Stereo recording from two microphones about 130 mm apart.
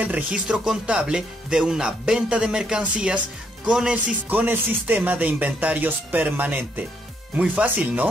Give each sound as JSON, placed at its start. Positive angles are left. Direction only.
{"t": 0.0, "sound": "speech", "side_deg": -10}